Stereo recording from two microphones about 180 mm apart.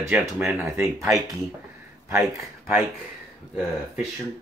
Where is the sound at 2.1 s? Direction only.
15° right (ahead or behind).